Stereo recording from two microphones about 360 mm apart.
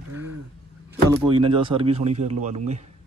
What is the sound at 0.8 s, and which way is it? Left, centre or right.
A man's voice, centre.